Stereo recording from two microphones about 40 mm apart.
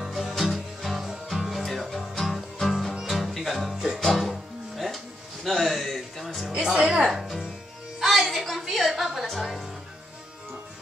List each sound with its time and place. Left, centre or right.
0.0 s music: centre
3.7 s music: centre
4.0 s music: centre
6.6 s music: centre
7.0 s music: centre
9.3 s speech: centre